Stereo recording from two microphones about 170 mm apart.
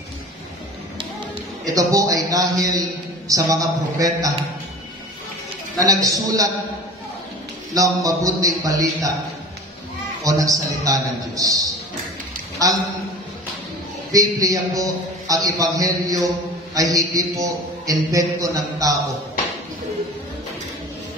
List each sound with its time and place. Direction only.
1.8 s a man's voice: 20° right (ahead or behind)
5.9 s a man's voice: 20° right (ahead or behind)
7.7 s a man's voice: 20° right (ahead or behind)
10.2 s a man's voice: 20° right (ahead or behind)
14.1 s a man's voice: 20° right (ahead or behind)